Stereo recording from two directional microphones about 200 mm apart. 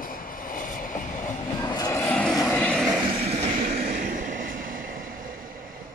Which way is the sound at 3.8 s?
45° right (ahead or behind).